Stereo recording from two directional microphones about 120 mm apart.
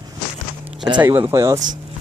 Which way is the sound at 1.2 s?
25° right (ahead or behind).